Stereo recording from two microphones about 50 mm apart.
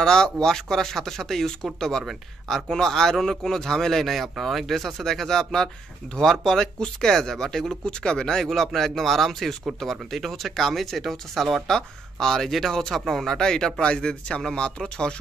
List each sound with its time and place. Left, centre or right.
0.0 s a man's voice: centre